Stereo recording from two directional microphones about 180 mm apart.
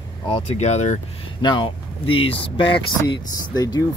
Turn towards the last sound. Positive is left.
turn(degrees=20)  # may be behind; listen again after turning